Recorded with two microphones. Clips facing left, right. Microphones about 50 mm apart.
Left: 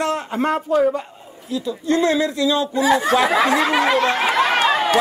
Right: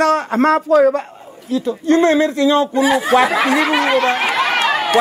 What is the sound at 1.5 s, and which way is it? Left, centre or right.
Speech, right.